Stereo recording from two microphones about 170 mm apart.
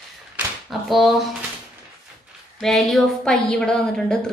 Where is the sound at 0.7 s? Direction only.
Centre (ahead or behind).